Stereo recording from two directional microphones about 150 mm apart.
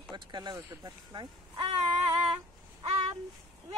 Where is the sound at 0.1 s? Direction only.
30° right (ahead or behind).